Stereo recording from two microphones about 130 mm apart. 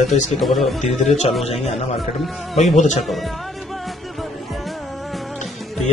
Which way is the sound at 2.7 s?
65° left (ahead or behind).